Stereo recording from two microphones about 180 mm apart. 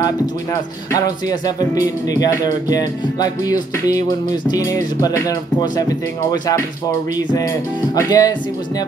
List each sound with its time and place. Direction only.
1.6 s music: 20° left (ahead or behind)
7.9 s music: 20° left (ahead or behind)